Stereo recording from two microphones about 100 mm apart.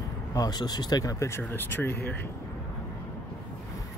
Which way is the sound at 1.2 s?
25° left (ahead or behind).